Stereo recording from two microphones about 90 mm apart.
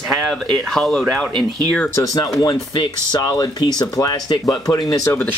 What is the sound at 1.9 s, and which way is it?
Speech, 40° left (ahead or behind).